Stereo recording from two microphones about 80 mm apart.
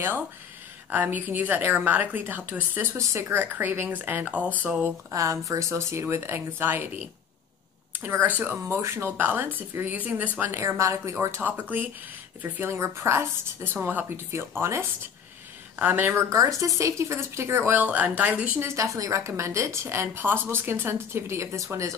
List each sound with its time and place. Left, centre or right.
0.9 s speech: right
3.0 s a woman's voice: right
3.3 s speech: right
5.1 s a woman's voice: right
11.1 s speech: right
12.7 s a woman's voice: right
13.7 s speech: right
16.3 s a woman's voice: right
18.6 s a woman's voice: right